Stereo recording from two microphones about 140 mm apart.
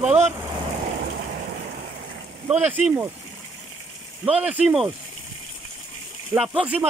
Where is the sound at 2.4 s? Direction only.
10° right (ahead or behind).